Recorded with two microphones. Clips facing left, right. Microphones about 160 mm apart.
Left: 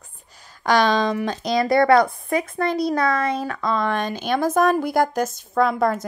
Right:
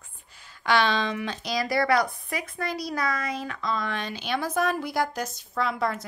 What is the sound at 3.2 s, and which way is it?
Speech, 30° left (ahead or behind).